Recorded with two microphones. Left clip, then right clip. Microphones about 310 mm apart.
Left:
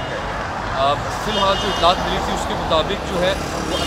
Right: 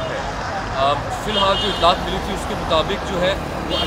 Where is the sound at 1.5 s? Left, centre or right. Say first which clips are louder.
Even; centre.